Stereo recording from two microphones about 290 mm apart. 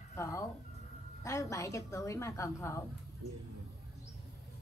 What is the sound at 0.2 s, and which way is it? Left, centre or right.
A woman's voice, centre.